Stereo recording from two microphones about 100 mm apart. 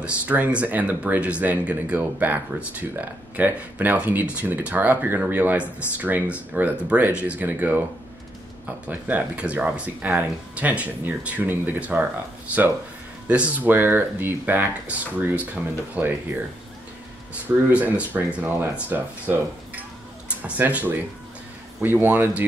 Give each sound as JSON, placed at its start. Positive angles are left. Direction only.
{"t": 0.0, "sound": "speech", "side_deg": -15}
{"t": 13.3, "sound": "speech", "side_deg": -15}
{"t": 17.7, "sound": "speech", "side_deg": -15}